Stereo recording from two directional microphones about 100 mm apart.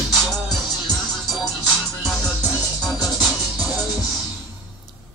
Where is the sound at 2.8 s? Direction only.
Centre (ahead or behind).